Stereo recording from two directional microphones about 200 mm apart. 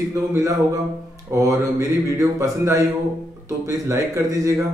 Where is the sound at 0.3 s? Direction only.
15° right (ahead or behind).